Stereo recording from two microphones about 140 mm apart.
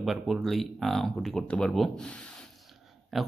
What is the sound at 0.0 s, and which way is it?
Speech, centre (ahead or behind).